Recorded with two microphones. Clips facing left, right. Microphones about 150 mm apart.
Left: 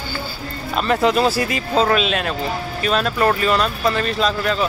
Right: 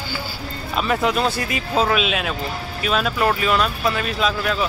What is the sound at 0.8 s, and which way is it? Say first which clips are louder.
Speech: left 3 dB; centre (ahead or behind).